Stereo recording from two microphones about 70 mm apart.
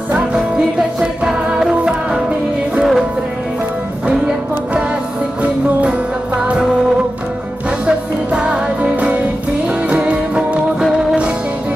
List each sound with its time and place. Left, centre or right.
0.9 s music: centre
5.4 s music: centre
7.8 s music: centre